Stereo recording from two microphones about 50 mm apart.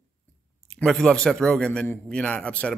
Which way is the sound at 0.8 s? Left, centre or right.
Centre.